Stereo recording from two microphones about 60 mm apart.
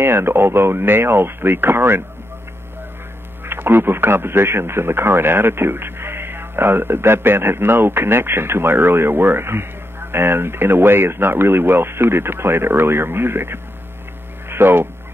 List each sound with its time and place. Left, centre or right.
0.0 s speech: right
3.4 s speech: right